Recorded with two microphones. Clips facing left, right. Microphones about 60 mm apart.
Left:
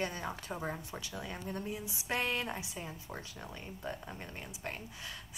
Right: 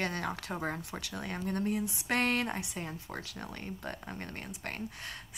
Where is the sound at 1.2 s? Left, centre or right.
Right.